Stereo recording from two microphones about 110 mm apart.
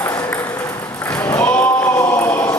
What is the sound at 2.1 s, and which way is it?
Chant, 25° left (ahead or behind).